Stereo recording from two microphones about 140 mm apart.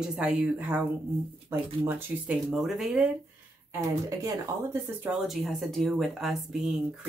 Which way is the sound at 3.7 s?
20° right (ahead or behind).